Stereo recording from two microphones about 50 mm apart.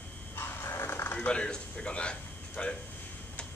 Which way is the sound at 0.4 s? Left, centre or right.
Left.